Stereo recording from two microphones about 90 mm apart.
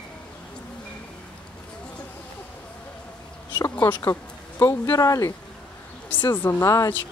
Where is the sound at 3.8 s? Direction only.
30° left (ahead or behind).